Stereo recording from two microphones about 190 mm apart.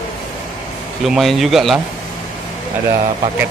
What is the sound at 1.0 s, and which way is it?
Speech, centre (ahead or behind).